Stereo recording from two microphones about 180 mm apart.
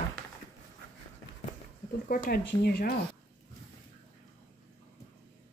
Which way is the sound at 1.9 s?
55° left (ahead or behind).